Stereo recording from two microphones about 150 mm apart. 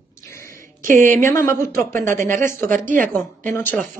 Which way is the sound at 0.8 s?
60° right (ahead or behind).